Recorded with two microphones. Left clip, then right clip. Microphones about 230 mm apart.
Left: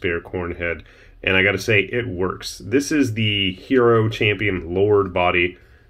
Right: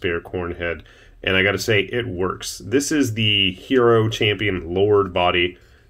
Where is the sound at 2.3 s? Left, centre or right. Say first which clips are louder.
Even; left.